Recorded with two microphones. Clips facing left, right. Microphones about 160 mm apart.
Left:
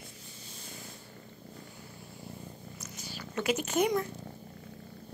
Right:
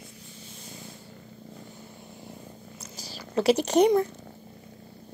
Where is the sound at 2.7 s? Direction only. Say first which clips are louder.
Right 3 dB; 35° right (ahead or behind).